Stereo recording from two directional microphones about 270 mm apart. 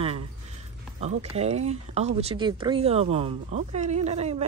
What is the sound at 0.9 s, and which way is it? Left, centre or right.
Speech, right.